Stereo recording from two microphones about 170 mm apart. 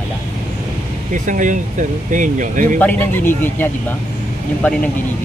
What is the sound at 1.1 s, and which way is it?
Speech, 50° right (ahead or behind).